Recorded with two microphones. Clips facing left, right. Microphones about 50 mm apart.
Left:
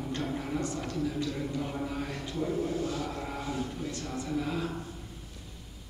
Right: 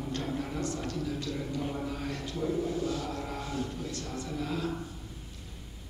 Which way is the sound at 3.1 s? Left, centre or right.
Centre.